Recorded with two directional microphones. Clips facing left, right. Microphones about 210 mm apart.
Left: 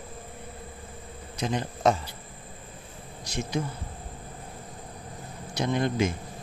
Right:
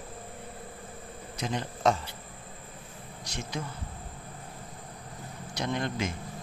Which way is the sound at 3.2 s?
10° left (ahead or behind).